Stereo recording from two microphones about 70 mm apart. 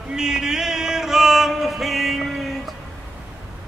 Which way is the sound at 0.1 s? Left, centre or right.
Centre.